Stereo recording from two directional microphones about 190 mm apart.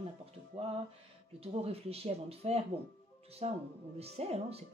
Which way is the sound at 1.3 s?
30° right (ahead or behind).